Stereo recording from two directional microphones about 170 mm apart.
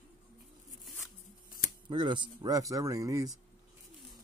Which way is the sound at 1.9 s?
25° right (ahead or behind).